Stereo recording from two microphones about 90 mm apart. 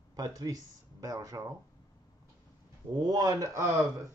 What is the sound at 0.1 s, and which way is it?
Speech, 45° right (ahead or behind).